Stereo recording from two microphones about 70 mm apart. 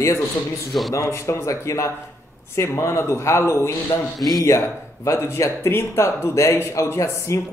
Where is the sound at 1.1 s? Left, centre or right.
Left.